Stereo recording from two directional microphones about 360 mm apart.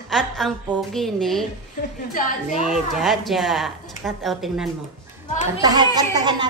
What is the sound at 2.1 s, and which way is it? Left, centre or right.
Speech, left.